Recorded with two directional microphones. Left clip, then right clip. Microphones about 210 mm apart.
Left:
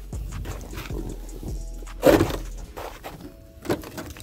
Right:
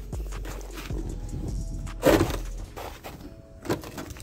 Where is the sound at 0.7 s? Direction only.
15° left (ahead or behind).